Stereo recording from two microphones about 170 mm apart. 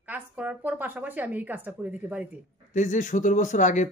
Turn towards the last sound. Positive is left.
turn(degrees=45)  # may be behind; listen again after turning